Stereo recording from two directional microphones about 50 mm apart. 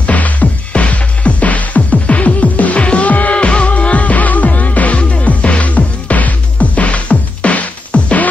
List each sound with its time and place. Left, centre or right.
0.0 s music: left